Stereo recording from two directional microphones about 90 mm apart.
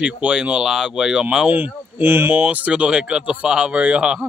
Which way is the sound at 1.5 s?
20° right (ahead or behind).